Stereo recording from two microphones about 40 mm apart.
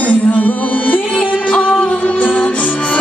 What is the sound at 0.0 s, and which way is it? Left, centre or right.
Music, left.